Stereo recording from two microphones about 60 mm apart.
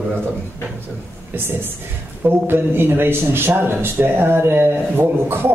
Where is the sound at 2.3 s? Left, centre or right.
Right.